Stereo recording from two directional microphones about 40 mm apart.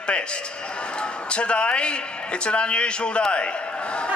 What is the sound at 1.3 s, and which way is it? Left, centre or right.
A man's voice, left.